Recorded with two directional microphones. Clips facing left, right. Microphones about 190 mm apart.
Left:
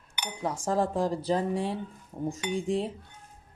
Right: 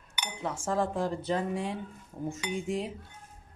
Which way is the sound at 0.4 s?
35° left (ahead or behind).